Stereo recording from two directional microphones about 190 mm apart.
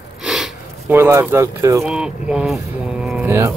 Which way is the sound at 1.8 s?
5° right (ahead or behind).